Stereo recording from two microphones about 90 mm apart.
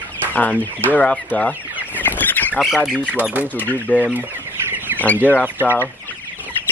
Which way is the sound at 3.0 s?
15° right (ahead or behind).